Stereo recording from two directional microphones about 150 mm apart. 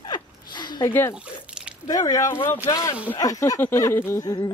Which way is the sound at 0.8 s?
15° left (ahead or behind).